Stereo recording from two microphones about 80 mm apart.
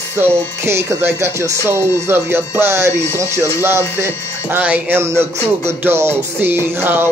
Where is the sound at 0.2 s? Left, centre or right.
Right.